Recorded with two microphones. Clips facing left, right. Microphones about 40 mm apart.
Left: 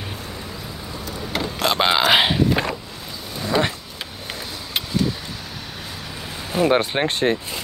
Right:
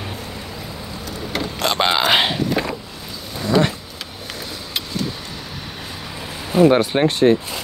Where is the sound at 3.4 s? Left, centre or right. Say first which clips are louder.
Right 3 dB; centre.